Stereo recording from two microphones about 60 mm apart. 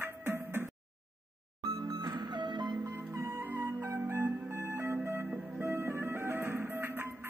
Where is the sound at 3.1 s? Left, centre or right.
Right.